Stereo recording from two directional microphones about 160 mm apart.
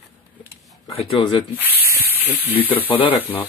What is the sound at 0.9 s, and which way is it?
Speech, 30° left (ahead or behind).